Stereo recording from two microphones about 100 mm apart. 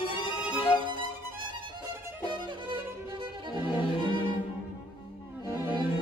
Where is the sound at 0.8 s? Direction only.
55° right (ahead or behind).